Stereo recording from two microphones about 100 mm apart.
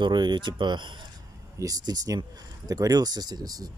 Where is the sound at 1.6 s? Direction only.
40° right (ahead or behind).